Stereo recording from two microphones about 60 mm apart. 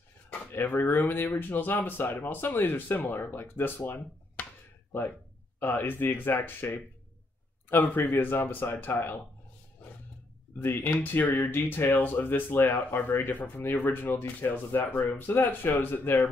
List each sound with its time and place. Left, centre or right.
0.3 s speech: left
5.6 s speech: left
10.6 s speech: left